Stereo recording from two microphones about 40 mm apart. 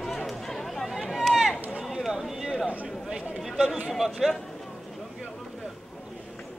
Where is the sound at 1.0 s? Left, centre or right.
Centre.